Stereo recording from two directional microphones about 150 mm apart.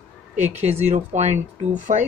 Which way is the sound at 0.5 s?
45° right (ahead or behind).